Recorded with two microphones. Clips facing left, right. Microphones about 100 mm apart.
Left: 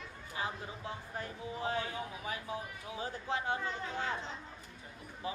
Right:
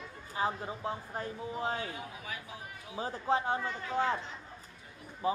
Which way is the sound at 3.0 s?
35° right (ahead or behind).